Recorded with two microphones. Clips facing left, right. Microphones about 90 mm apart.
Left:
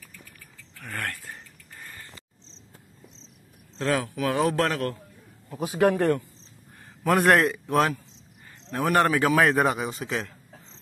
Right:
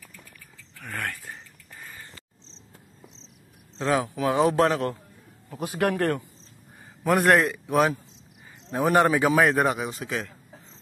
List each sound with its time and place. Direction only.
0.7 s a sound: centre (ahead or behind)
3.7 s a man's voice: 20° right (ahead or behind)
5.8 s speech: 20° left (ahead or behind)
7.1 s a man's voice: centre (ahead or behind)
8.6 s a man's voice: 15° right (ahead or behind); by 10.3 s centre (ahead or behind)